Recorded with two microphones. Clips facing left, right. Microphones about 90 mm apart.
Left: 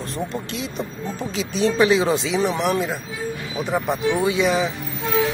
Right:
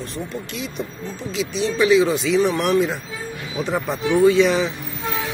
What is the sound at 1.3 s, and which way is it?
Speech, 40° left (ahead or behind).